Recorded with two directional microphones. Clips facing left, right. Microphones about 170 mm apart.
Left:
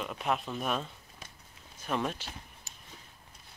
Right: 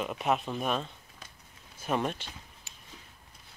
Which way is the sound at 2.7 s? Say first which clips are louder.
Left 1 dB; 40° left (ahead or behind).